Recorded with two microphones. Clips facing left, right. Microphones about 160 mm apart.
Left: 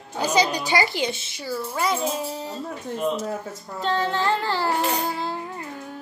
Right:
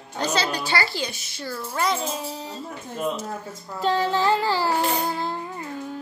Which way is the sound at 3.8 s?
5° right (ahead or behind).